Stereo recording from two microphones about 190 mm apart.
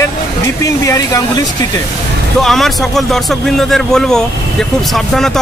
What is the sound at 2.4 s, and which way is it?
Speech, centre (ahead or behind).